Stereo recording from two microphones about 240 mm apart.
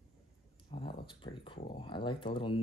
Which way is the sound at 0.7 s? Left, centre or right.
Left.